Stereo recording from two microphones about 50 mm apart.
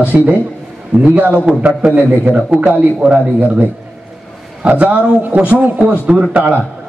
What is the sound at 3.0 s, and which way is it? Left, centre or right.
Speech, right.